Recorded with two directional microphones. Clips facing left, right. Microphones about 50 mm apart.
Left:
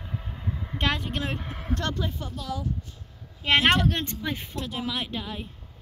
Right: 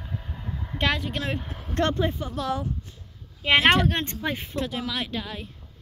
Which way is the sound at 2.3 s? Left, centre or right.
Right.